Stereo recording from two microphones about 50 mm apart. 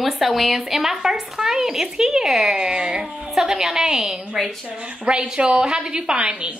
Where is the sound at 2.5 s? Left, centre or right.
Centre.